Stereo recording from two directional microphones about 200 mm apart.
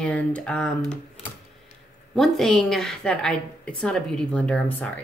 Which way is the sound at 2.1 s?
Centre (ahead or behind).